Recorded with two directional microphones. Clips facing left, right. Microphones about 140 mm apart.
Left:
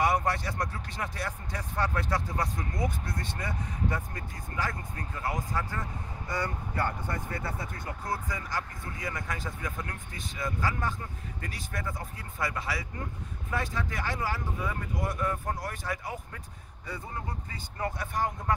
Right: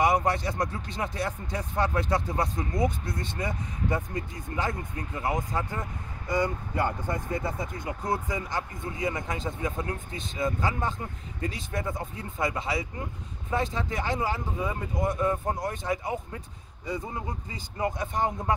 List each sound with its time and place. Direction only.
0.0 s a man's voice: 20° right (ahead or behind)